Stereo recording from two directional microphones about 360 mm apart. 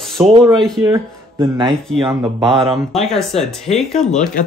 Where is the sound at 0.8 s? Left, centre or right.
Centre.